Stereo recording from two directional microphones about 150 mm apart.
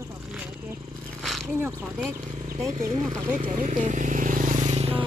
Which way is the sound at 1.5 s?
15° right (ahead or behind).